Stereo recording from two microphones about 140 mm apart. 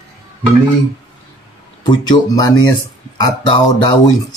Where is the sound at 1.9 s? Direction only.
30° left (ahead or behind).